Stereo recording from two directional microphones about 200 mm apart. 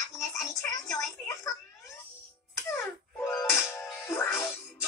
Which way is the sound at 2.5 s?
15° left (ahead or behind).